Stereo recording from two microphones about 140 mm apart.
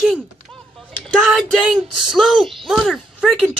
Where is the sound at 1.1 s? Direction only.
Centre (ahead or behind).